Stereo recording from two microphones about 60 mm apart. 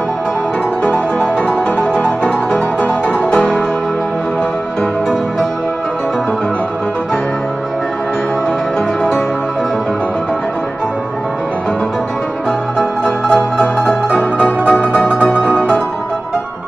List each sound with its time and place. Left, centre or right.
3.3 s music: centre
12.7 s music: centre
14.6 s music: left